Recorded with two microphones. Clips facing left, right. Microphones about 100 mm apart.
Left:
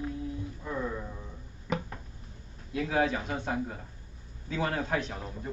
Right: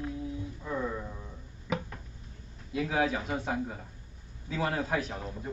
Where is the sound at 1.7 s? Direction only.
Centre (ahead or behind).